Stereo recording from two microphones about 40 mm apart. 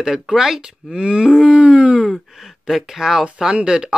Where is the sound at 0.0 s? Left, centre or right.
Centre.